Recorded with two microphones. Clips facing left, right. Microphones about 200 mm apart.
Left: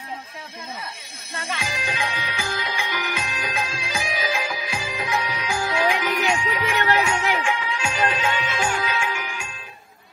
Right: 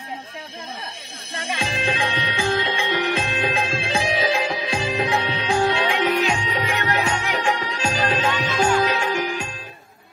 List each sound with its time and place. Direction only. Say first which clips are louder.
1.3 s music: right 3 dB; 30° right (ahead or behind)